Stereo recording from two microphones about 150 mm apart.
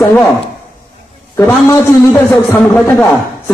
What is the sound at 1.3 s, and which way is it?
A woman's voice, 20° left (ahead or behind).